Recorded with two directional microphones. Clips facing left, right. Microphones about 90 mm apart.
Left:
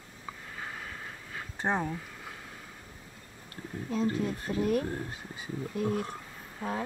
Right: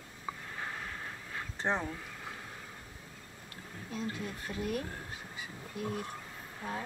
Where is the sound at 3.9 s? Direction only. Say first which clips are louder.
Left 9 dB; 40° left (ahead or behind).